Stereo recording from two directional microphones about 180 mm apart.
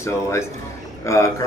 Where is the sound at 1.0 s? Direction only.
15° left (ahead or behind).